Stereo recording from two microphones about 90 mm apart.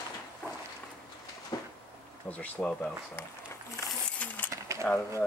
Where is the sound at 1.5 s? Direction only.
45° left (ahead or behind).